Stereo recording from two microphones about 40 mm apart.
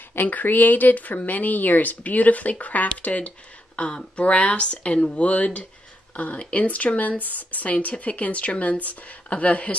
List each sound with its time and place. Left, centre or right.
0.3 s speech: left